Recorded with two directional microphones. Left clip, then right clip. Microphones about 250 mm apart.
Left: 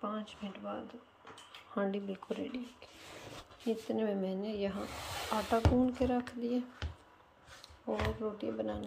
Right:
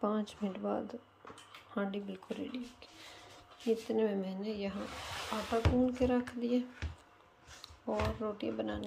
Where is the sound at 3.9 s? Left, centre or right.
Centre.